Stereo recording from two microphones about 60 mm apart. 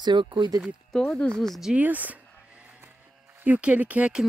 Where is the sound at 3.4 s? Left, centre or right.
Right.